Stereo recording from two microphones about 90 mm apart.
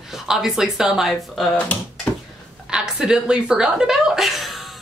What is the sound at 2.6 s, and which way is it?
A woman's voice, 10° right (ahead or behind).